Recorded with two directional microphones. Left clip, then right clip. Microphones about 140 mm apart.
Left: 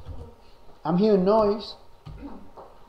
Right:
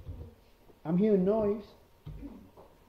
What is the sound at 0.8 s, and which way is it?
Speech, 10° left (ahead or behind).